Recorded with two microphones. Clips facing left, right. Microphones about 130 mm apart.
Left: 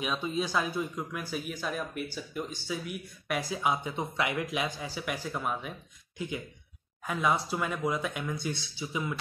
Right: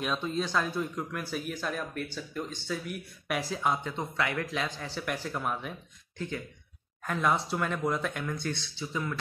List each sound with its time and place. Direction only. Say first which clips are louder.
0.0 s speech: even; 5° left (ahead or behind)